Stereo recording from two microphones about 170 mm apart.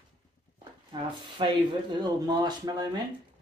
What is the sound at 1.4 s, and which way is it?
Speech, 30° right (ahead or behind).